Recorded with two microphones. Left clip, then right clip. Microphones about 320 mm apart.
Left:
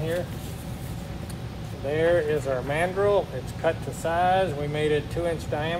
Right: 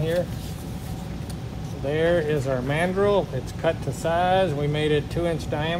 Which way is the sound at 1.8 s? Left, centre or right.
Right.